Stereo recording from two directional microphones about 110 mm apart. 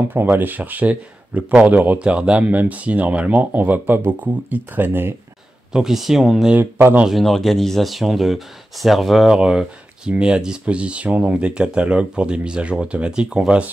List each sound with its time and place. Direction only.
0.1 s speech: 15° right (ahead or behind)
5.7 s speech: 5° right (ahead or behind)
6.5 s speech: 20° right (ahead or behind)
7.1 s speech: centre (ahead or behind)